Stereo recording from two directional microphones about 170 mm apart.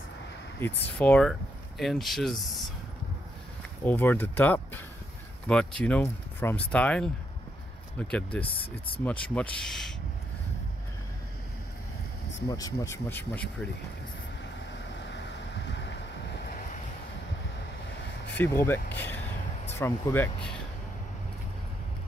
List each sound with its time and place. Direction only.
0.9 s speech: 5° left (ahead or behind)
3.8 s speech: 10° left (ahead or behind)
8.1 s speech: 10° left (ahead or behind)
8.5 s speech: 30° left (ahead or behind)
9.0 s speech: 10° left (ahead or behind)
12.4 s speech: 20° left (ahead or behind)
18.4 s speech: 15° left (ahead or behind)